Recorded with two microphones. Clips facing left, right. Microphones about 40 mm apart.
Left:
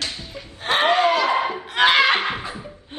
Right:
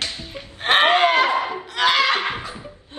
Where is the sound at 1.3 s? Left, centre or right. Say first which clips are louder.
Left 2 dB; left.